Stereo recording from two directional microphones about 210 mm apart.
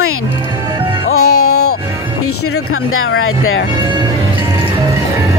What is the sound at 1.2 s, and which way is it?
Music, 90° left.